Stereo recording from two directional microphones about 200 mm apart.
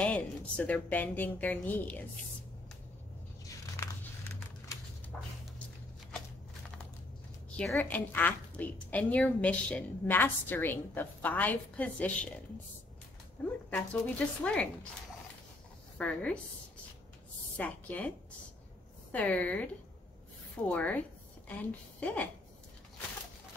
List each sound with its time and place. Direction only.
0.0 s a woman's voice: 5° left (ahead or behind)
3.4 s scissors: 15° left (ahead or behind)
5.1 s a sound: centre (ahead or behind)
7.5 s a woman's voice: 5° left (ahead or behind)
13.7 s a woman's voice: 5° left (ahead or behind)
16.0 s a woman's voice: 5° left (ahead or behind)
17.6 s a woman's voice: 5° left (ahead or behind)
19.1 s a woman's voice: 5° left (ahead or behind)
22.0 s a woman's voice: 5° left (ahead or behind)